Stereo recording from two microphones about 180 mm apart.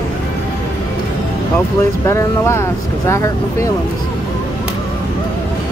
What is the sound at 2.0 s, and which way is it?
Speech, 15° left (ahead or behind).